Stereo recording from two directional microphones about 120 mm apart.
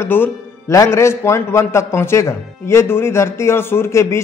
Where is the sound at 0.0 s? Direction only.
20° left (ahead or behind).